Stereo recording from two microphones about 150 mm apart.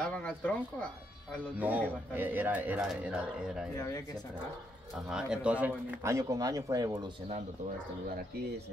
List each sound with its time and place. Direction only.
0.0 s speech: 5° left (ahead or behind)
1.6 s speech: 10° right (ahead or behind)
3.7 s speech: 25° left (ahead or behind)
5.1 s speech: 5° right (ahead or behind)
6.0 s speech: 20° right (ahead or behind)